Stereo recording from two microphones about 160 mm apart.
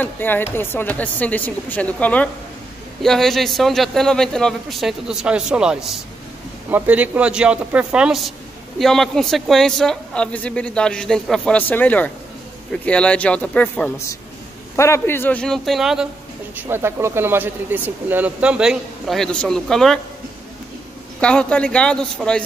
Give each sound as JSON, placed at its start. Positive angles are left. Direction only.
{"t": 0.0, "sound": "a woman's voice", "side_deg": 10}
{"t": 16.5, "sound": "speech", "side_deg": -15}
{"t": 21.2, "sound": "speech", "side_deg": 5}